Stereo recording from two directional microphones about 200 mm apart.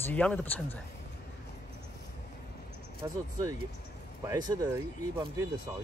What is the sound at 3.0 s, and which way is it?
Speech, 20° right (ahead or behind).